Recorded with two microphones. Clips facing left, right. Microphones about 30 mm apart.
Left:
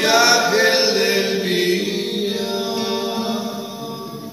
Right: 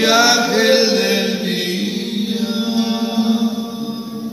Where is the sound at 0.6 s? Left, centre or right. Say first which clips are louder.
Right 3 dB; right.